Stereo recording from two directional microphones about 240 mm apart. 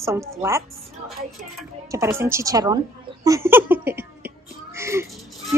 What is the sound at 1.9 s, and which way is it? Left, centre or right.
A woman's voice, centre.